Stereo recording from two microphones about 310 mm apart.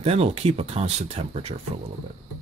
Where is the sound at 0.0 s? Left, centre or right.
Centre.